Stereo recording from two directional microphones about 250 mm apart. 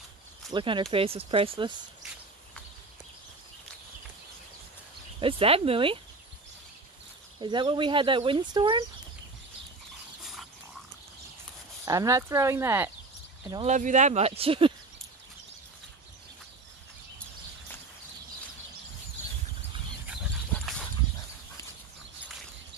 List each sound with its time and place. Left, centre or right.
0.5 s speech: centre
5.2 s speech: right
7.3 s speech: centre
11.8 s speech: centre
13.7 s speech: right
20.1 s dog: centre